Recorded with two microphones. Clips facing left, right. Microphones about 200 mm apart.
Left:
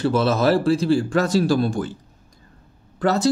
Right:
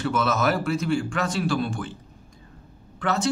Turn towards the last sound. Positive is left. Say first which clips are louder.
# left 6 dB
turn(degrees=35)  # may be behind; listen again after turning